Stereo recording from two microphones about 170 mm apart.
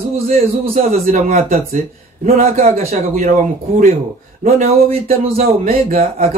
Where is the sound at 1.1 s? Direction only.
50° right (ahead or behind).